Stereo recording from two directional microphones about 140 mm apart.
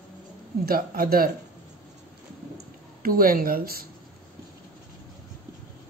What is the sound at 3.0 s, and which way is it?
Speech, 90° right.